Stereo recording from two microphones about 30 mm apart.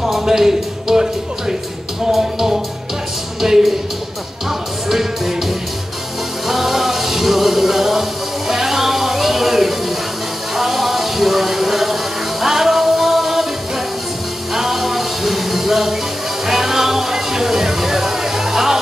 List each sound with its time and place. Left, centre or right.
0.2 s speech: centre
2.0 s music: centre
3.3 s a sound: centre
4.5 s music: centre
6.4 s music: centre
10.5 s a sound: centre
14.5 s music: centre